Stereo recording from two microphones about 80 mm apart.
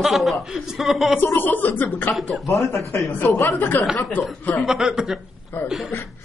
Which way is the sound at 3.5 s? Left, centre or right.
Left.